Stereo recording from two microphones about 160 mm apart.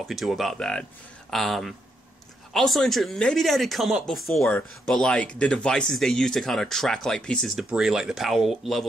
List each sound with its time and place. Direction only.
0.0 s speech: centre (ahead or behind)